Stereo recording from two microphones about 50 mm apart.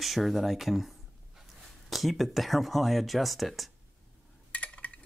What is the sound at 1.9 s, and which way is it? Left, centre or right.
Speech, centre.